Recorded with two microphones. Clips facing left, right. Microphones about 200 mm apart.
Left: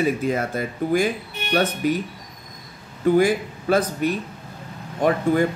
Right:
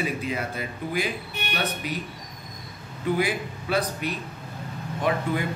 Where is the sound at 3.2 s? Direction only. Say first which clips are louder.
Left 7 dB; 45° left (ahead or behind).